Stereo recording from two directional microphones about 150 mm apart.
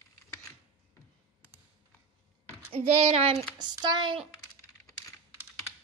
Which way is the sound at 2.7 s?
40° right (ahead or behind).